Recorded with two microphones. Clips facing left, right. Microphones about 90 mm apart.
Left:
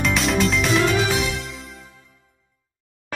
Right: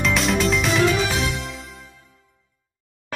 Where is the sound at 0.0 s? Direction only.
Centre (ahead or behind).